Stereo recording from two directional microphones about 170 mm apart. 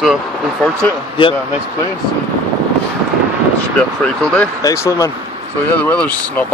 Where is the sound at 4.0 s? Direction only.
5° left (ahead or behind).